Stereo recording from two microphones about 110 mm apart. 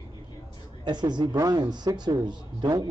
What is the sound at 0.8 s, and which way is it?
A man's voice, 40° right (ahead or behind).